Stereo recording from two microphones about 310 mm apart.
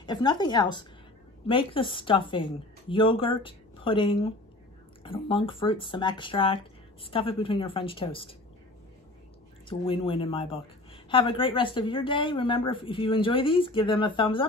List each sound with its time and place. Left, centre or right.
0.0 s a woman's voice: centre
9.7 s a woman's voice: centre